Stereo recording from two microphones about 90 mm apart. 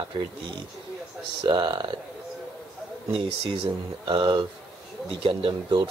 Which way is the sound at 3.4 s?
80° right.